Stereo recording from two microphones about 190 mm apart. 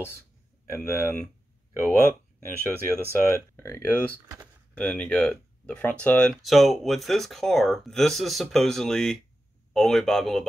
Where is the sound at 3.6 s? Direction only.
15° left (ahead or behind).